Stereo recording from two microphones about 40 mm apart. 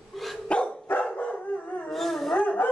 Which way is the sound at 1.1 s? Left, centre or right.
Left.